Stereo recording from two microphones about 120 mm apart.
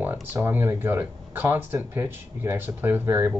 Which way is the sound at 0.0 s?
15° right (ahead or behind).